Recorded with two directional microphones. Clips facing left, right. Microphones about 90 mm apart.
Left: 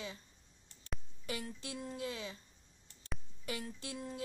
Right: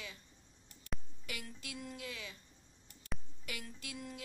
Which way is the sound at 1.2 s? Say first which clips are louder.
Left 9 dB; 30° left (ahead or behind).